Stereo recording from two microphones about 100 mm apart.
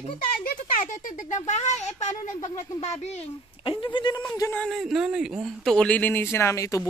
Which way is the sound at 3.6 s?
55° left (ahead or behind).